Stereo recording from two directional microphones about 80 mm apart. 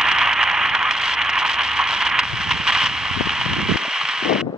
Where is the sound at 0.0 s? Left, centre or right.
Centre.